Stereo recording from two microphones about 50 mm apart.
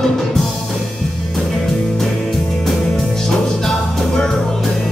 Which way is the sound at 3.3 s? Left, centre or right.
Centre.